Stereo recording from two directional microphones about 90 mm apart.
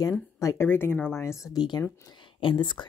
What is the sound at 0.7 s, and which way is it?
A woman's voice, 25° left (ahead or behind).